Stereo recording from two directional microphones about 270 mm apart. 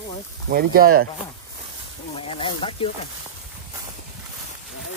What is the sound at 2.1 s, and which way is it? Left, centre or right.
Speech, centre.